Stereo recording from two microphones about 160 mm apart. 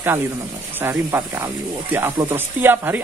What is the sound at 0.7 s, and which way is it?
Speech, 15° right (ahead or behind).